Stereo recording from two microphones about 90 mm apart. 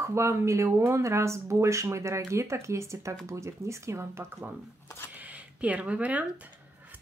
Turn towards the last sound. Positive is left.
turn(degrees=-15)  # may be behind; listen again after turning